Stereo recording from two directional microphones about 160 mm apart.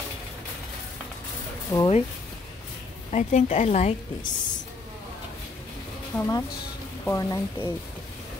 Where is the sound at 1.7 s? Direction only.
15° left (ahead or behind).